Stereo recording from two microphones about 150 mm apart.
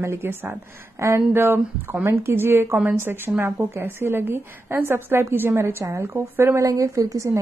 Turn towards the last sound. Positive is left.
turn(degrees=-20)  # may be behind; listen again after turning